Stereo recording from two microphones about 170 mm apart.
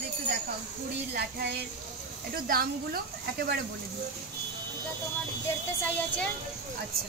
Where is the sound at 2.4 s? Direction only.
60° right (ahead or behind).